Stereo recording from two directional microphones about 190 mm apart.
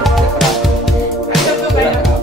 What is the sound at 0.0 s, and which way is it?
Music, centre (ahead or behind).